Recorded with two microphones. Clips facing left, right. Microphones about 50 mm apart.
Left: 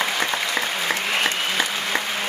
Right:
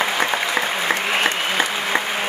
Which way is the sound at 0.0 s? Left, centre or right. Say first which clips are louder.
Right 3 dB; centre.